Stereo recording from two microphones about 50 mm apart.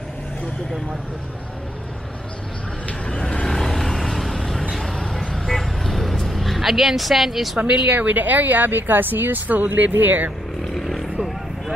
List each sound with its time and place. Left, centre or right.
3.1 s vehicle: centre
7.5 s speech: right
10.7 s vehicle: centre